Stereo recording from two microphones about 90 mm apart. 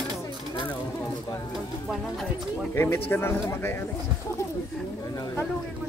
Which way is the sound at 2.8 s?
25° left (ahead or behind).